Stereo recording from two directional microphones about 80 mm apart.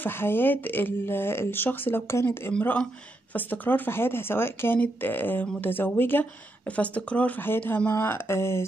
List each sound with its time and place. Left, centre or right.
0.0 s speech: left